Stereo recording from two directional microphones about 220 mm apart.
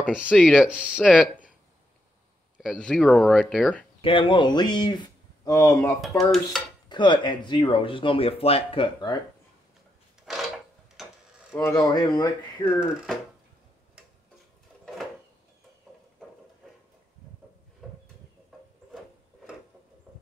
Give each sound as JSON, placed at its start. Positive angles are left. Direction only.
{"t": 0.3, "sound": "speech", "side_deg": 0}
{"t": 2.5, "sound": "speech", "side_deg": 5}
{"t": 4.0, "sound": "speech", "side_deg": 25}
{"t": 5.9, "sound": "speech", "side_deg": 0}
{"t": 6.9, "sound": "speech", "side_deg": 20}
{"t": 10.3, "sound": "a sound", "side_deg": 0}
{"t": 11.5, "sound": "speech", "side_deg": 15}
{"t": 12.8, "sound": "speech", "side_deg": 0}
{"t": 17.8, "sound": "a sound", "side_deg": 0}
{"t": 20.1, "sound": "clip-clop", "side_deg": -5}